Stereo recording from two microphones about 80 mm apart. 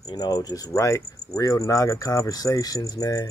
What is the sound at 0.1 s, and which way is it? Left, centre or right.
Cricket, left.